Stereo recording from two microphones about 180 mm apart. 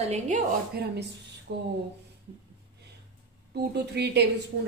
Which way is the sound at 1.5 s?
60° right (ahead or behind).